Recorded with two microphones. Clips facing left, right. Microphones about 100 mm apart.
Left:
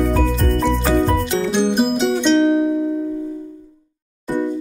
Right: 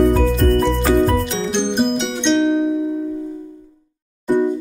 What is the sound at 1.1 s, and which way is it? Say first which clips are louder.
Music: left 1 dB; 5° left (ahead or behind).